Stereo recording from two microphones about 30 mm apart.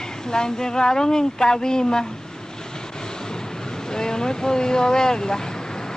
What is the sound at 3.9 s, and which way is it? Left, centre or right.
Speech, left.